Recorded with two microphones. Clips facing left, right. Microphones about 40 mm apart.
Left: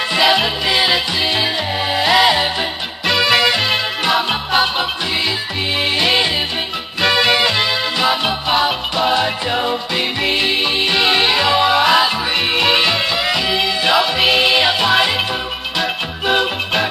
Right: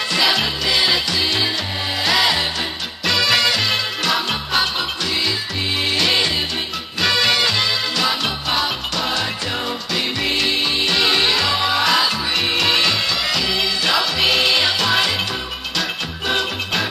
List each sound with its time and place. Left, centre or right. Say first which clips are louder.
0.1 s music: left 4 dB; centre
5.9 s music: left 2 dB; centre